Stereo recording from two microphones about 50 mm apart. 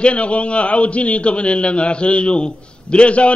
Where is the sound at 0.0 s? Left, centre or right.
Left.